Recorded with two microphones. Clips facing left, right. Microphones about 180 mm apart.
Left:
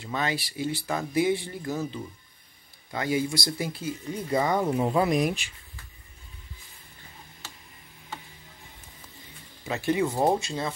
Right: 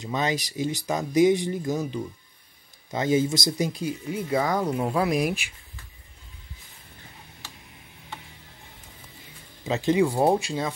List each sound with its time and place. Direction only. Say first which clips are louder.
0.0 s speech: right 3 dB; 20° right (ahead or behind)
4.3 s speech: even; centre (ahead or behind)
9.7 s speech: right 4 dB; 20° right (ahead or behind)